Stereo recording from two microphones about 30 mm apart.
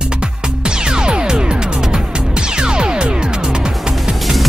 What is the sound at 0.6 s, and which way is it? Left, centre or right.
Music, right.